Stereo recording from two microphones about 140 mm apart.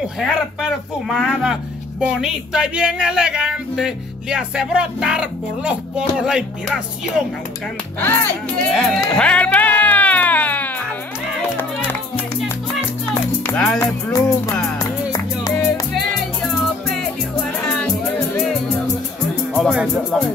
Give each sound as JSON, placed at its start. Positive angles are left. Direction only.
{"t": 0.0, "sound": "speech", "side_deg": 0}
{"t": 8.6, "sound": "a sound", "side_deg": 0}
{"t": 13.1, "sound": "music", "side_deg": 15}
{"t": 13.7, "sound": "music", "side_deg": 25}
{"t": 16.8, "sound": "music", "side_deg": 5}
{"t": 19.5, "sound": "speech", "side_deg": -5}